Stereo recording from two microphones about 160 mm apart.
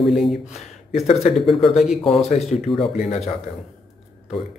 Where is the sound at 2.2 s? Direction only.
40° left (ahead or behind).